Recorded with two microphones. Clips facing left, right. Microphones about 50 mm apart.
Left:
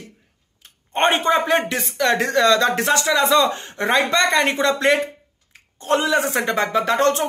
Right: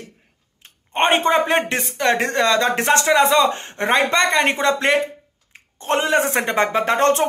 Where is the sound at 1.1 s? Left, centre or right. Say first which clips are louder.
Right 2 dB; right.